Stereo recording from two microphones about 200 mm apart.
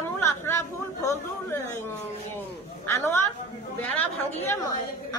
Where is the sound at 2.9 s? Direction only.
10° left (ahead or behind).